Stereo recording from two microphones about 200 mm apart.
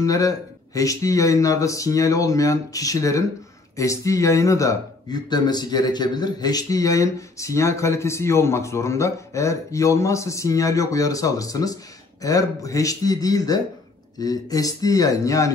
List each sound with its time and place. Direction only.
0.0 s a man's voice: 15° left (ahead or behind)